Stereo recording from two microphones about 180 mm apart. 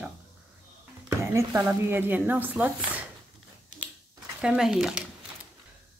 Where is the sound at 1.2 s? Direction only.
15° right (ahead or behind).